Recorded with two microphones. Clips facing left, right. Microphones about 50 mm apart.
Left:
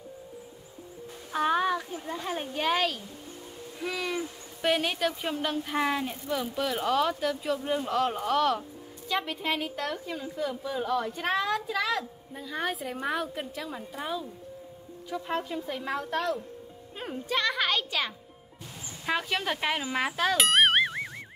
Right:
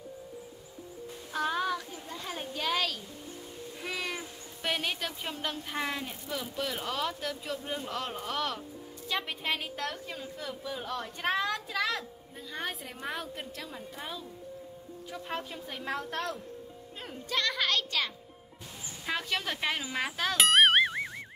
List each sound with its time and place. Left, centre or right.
1.3 s a woman's voice: left
3.8 s a woman's voice: centre
15.2 s a woman's voice: centre
17.0 s a woman's voice: centre
20.2 s a sound: centre